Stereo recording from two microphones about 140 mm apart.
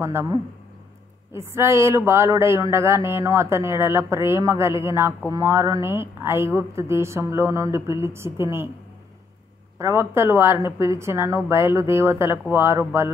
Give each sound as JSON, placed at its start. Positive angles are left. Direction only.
{"t": 0.0, "sound": "speech", "side_deg": -20}
{"t": 9.8, "sound": "speech", "side_deg": -20}